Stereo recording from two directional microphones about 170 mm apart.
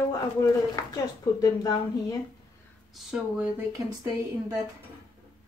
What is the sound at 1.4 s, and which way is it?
Speech, 20° left (ahead or behind).